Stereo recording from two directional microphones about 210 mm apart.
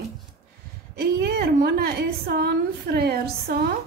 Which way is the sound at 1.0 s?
50° right (ahead or behind).